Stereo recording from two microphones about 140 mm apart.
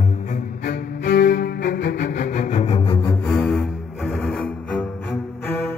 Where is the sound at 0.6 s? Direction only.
90° left; by 3.1 s 35° left (ahead or behind).